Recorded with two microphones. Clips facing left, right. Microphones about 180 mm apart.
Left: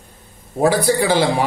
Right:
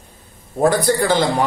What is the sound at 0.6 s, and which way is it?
Speech, 5° left (ahead or behind).